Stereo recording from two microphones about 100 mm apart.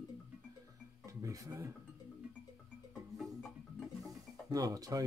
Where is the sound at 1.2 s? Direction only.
35° right (ahead or behind).